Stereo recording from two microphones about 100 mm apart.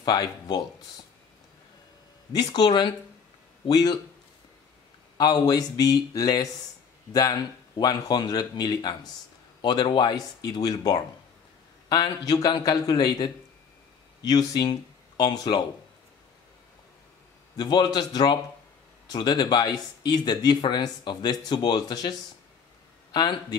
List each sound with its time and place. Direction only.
0.0 s speech: 45° left (ahead or behind)
2.3 s speech: 45° left (ahead or behind)
5.1 s speech: 45° left (ahead or behind)
17.6 s speech: 45° left (ahead or behind)